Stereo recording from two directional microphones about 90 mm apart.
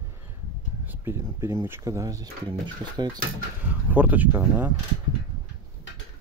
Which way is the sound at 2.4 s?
55° right (ahead or behind).